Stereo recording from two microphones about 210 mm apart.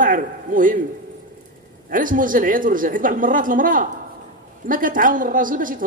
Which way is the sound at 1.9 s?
40° right (ahead or behind).